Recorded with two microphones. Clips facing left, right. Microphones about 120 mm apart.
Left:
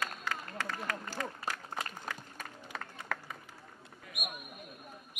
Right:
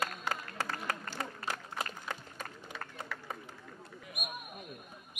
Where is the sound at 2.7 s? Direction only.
45° left (ahead or behind).